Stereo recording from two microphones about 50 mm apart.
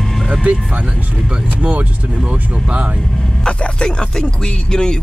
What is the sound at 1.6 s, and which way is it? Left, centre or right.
Speech, right.